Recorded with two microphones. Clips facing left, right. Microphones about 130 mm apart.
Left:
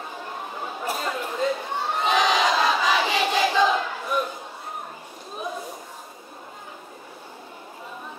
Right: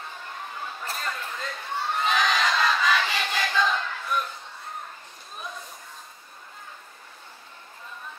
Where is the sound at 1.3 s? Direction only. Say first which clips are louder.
Left 7 dB; 25° left (ahead or behind).